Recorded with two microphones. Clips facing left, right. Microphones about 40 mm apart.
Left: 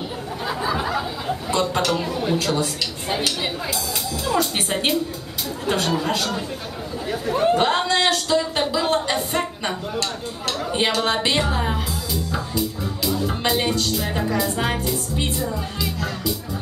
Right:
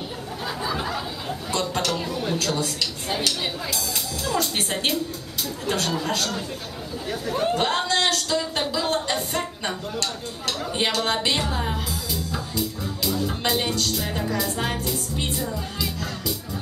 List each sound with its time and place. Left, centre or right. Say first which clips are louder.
0.5 s chatter: left 4 dB; centre
4.2 s a woman's voice: left 3 dB; centre